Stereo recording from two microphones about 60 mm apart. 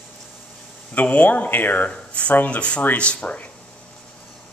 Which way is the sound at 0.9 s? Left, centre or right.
Left.